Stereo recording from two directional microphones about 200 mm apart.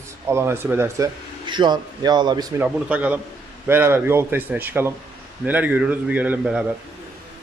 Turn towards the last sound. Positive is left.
turn(degrees=-5)  # may be behind; listen again after turning